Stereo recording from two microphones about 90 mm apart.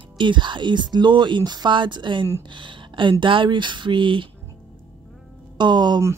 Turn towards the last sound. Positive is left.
turn(degrees=-55)  # may be behind; listen again after turning